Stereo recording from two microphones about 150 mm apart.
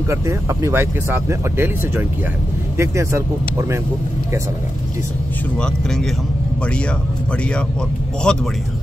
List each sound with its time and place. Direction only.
0.1 s speech: 20° right (ahead or behind)
5.6 s speech: 5° left (ahead or behind)
8.3 s speech: 5° left (ahead or behind)